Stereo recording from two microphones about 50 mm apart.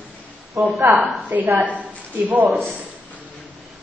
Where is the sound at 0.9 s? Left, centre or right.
Right.